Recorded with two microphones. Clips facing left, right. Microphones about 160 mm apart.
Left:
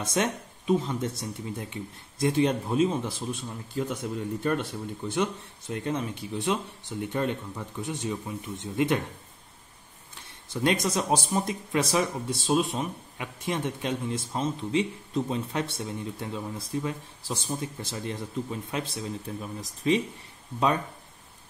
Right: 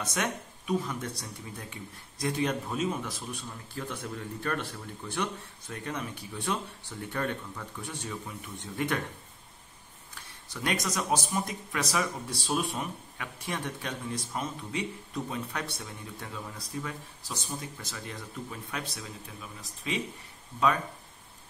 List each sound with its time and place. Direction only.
0.0 s speech: 25° left (ahead or behind)
10.1 s speech: 25° left (ahead or behind)
19.4 s speech: 40° left (ahead or behind)